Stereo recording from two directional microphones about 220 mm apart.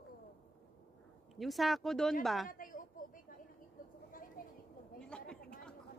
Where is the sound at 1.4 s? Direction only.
Centre (ahead or behind).